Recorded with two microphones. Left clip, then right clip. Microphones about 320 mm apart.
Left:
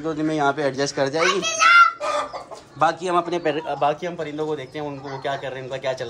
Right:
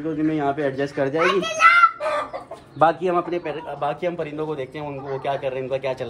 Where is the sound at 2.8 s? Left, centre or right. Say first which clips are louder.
Right 1 dB; centre.